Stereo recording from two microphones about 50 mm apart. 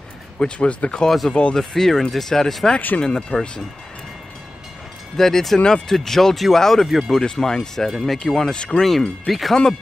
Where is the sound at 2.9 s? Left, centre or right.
Left.